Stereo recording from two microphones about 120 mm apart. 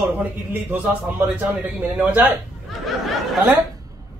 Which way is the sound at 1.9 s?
15° right (ahead or behind).